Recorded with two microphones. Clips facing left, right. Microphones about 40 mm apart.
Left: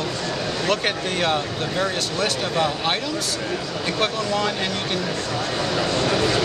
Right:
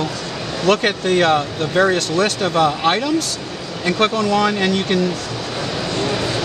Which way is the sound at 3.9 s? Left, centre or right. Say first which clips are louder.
Right 7 dB; right.